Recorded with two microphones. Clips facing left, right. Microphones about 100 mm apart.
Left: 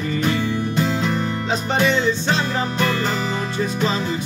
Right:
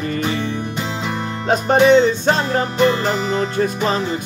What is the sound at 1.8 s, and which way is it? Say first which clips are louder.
Music: right 8 dB; 50° right (ahead or behind).